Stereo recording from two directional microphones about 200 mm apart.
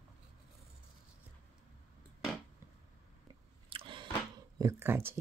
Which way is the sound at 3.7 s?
25° right (ahead or behind).